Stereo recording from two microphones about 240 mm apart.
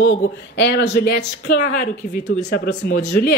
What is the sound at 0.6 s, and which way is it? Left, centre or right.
A woman's voice, left.